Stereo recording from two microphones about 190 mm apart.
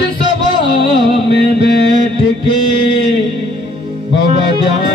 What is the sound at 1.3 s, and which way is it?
Music, 65° left (ahead or behind).